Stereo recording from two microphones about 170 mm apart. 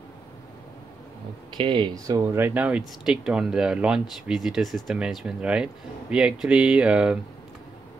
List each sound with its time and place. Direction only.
1.6 s speech: 30° right (ahead or behind); by 7.2 s 5° right (ahead or behind)